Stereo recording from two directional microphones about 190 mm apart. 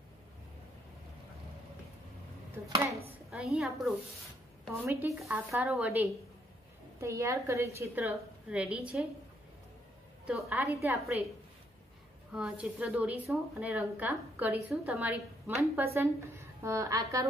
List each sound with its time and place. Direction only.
2.7 s speech: 15° right (ahead or behind)
3.3 s a woman's voice: 5° right (ahead or behind)
4.8 s speech: 15° right (ahead or behind)
10.2 s speech: 5° right (ahead or behind)
12.3 s speech: 5° right (ahead or behind)